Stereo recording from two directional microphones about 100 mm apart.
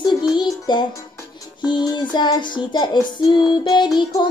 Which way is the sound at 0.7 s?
50° left (ahead or behind).